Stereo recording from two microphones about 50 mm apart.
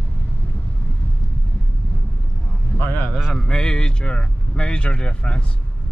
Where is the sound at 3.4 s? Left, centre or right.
Centre.